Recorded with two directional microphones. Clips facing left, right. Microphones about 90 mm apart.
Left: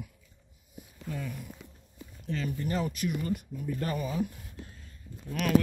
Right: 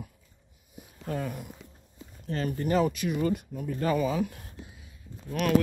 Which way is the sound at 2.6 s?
90° right.